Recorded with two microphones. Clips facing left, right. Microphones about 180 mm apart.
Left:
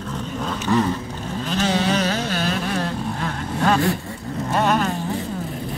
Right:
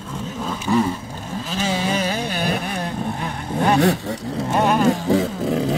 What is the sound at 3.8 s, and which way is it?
Vehicle, 80° right.